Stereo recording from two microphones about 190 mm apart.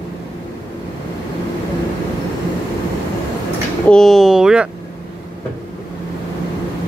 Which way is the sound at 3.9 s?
Centre (ahead or behind).